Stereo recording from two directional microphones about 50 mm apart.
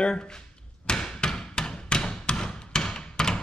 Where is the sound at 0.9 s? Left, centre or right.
Centre.